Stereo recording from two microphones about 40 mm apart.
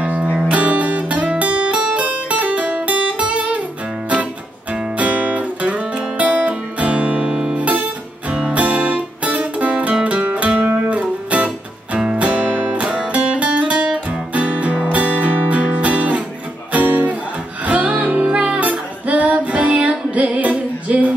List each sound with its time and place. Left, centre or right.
0.0 s music: right
1.4 s guitar: right
4.9 s guitar: right
8.5 s music: right
10.0 s zither: right
10.7 s music: right